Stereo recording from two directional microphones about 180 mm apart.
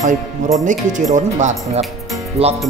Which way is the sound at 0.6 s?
45° right (ahead or behind).